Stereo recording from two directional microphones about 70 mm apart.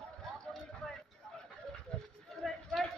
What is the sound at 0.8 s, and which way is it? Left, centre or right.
Vehicle, centre.